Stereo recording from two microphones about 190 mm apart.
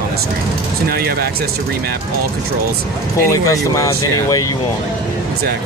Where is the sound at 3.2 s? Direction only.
15° left (ahead or behind).